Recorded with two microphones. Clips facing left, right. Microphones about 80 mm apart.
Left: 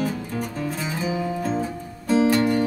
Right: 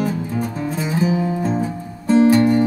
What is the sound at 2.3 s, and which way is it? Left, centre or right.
Music, right.